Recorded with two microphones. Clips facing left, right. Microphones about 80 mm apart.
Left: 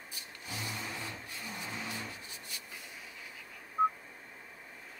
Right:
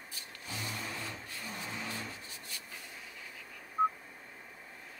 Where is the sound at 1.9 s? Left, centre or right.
Centre.